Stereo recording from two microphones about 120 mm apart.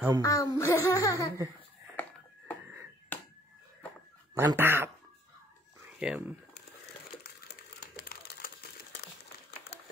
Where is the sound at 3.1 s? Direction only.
15° left (ahead or behind).